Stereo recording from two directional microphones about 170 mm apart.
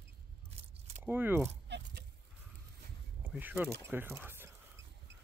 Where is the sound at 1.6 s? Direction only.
90° right.